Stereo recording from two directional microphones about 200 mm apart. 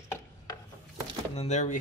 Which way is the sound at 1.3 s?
35° left (ahead or behind).